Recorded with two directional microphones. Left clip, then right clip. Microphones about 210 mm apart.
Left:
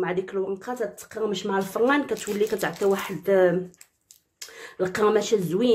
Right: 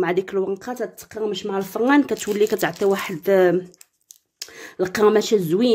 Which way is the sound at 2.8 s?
40° right (ahead or behind).